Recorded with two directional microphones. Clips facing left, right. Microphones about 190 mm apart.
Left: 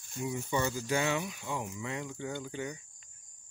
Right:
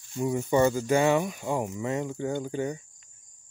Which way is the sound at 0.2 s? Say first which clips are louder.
Right 9 dB; 50° right (ahead or behind).